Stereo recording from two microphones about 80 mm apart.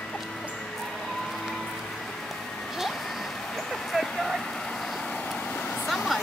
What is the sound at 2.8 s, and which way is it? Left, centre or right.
Vehicle, centre.